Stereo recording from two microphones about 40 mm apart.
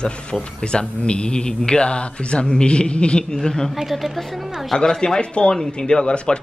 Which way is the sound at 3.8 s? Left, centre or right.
Centre.